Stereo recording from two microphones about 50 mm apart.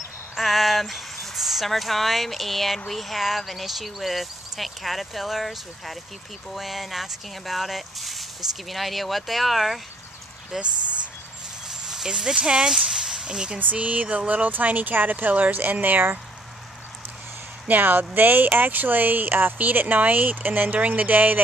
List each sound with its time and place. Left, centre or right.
0.4 s speech: centre
10.5 s speech: centre
12.7 s a sound: centre
13.6 s speech: right
17.6 s speech: right